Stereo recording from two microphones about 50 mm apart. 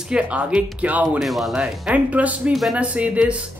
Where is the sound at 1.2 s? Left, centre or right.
Centre.